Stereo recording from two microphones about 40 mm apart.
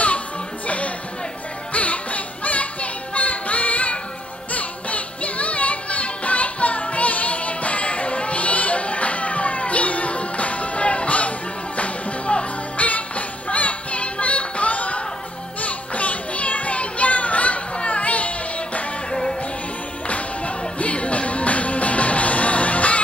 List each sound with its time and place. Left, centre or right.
0.7 s music: left
15.6 s children playing: left
20.1 s music: left